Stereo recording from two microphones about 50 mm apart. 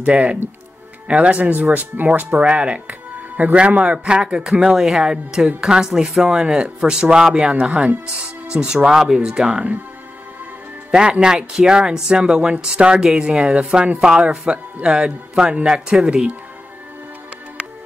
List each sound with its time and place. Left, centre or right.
0.0 s speech: right
1.4 s speech: right
2.4 s speech: right
10.9 s speech: centre